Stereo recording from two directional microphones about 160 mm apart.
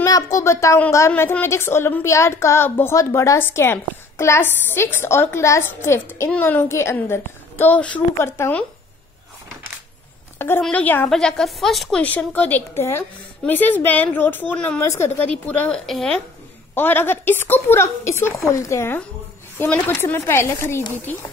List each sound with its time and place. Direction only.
0.0 s a woman's voice: 20° left (ahead or behind)
10.6 s a woman's voice: 10° left (ahead or behind)